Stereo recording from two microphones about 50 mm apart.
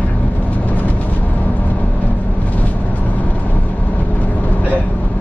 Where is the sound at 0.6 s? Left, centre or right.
Left.